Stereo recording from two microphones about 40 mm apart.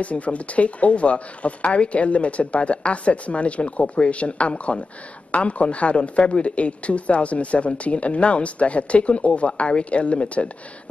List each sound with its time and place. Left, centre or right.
0.0 s speech: left